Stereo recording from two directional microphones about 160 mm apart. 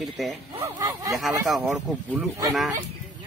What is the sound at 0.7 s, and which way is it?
Speech, 20° right (ahead or behind).